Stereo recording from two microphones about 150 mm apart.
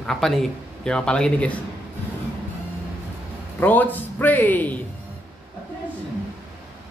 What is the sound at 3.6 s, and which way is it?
A man's voice, 10° left (ahead or behind).